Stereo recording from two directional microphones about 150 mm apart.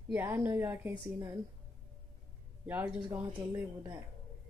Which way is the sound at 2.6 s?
10° right (ahead or behind).